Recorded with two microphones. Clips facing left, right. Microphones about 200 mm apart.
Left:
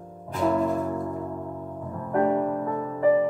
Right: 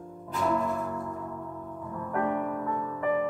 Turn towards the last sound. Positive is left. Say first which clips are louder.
# left 5 dB
turn(degrees=30)  # may be behind; listen again after turning